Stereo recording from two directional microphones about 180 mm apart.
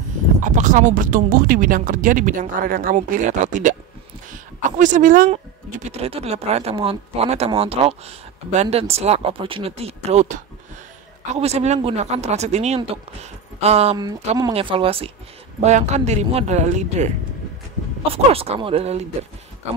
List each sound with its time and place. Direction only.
0.4 s speech: 45° right (ahead or behind)
5.9 s speech: 35° right (ahead or behind)
13.9 s speech: 20° right (ahead or behind); by 17.1 s 40° right (ahead or behind)
18.1 s speech: 35° right (ahead or behind)